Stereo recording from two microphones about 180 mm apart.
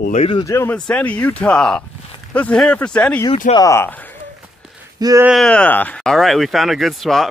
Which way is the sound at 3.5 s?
15° left (ahead or behind).